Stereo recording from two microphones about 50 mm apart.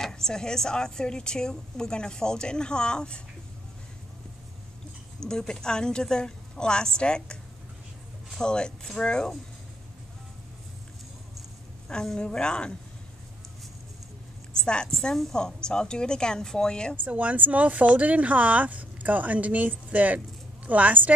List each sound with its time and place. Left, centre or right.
0.1 s a woman's voice: centre
5.2 s a woman's voice: centre
8.4 s a woman's voice: centre
11.9 s a woman's voice: centre
14.5 s a woman's voice: centre
16.9 s speech: right